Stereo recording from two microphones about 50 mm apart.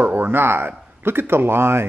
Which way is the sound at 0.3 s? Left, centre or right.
Right.